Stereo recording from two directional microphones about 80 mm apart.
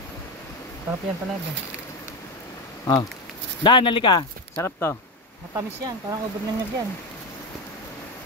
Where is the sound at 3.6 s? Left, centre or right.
Left.